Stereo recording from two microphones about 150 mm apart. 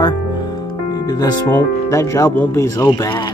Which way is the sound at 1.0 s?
25° left (ahead or behind).